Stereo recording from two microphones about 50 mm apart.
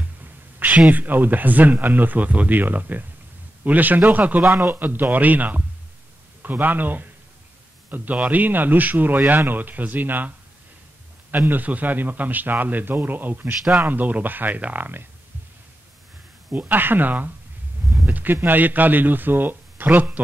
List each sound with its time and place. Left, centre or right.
0.0 s a man's voice: right
11.3 s a man's voice: right
16.5 s a man's voice: right